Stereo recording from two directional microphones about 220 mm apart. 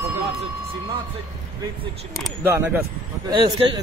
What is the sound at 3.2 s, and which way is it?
Speech, 20° right (ahead or behind).